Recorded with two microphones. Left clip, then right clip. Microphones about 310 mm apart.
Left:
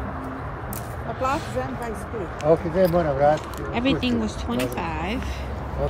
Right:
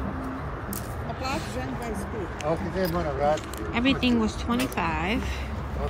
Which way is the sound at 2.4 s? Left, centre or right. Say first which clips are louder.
Left 9 dB; left.